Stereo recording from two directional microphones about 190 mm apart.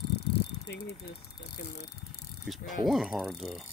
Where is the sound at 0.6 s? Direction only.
60° left (ahead or behind).